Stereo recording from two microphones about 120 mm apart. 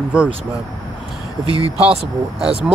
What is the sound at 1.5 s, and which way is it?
Speech, 50° right (ahead or behind).